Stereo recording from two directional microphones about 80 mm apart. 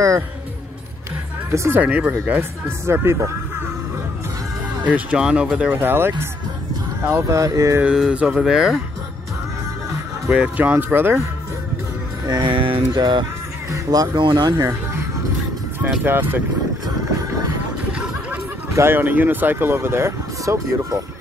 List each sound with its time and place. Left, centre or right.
1.5 s speech: right
1.8 s speech: centre
2.9 s speech: right
4.8 s speech: centre
5.6 s speech: right
7.8 s speech: centre
10.3 s speech: centre
10.7 s speech: right
12.3 s speech: right
14.6 s speech: right
16.0 s speech: right
17.9 s a sound: centre
18.7 s speech: right
18.9 s speech: right